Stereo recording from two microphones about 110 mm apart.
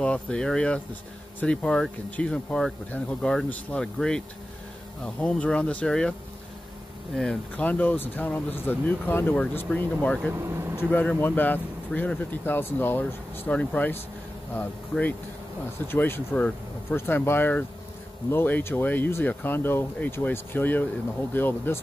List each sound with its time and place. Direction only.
0.0 s speech: 10° left (ahead or behind)
7.5 s speech: 15° left (ahead or behind)
10.3 s speech: 25° right (ahead or behind)
10.8 s speech: 15° left (ahead or behind)